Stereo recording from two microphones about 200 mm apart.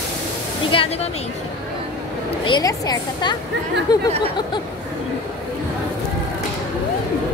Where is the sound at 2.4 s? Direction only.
20° left (ahead or behind).